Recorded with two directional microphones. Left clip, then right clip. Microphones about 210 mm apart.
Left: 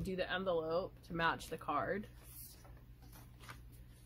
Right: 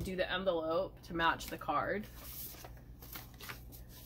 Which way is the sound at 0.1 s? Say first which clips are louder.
Right 3 dB; 45° left (ahead or behind).